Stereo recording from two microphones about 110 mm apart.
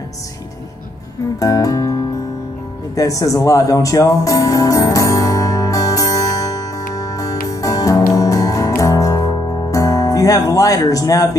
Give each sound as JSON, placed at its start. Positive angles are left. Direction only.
{"t": 1.4, "sound": "music", "side_deg": 30}
{"t": 3.0, "sound": "music", "side_deg": 30}